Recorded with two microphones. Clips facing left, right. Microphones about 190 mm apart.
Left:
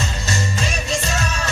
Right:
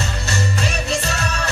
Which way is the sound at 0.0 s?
65° right (ahead or behind).